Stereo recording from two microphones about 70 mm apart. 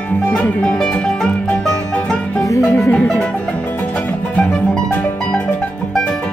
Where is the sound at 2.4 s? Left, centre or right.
Left.